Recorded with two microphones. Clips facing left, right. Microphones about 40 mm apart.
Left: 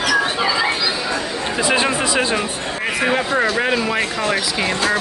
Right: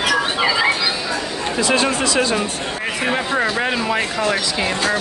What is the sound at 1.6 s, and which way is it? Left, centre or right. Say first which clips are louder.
Speech: even; centre.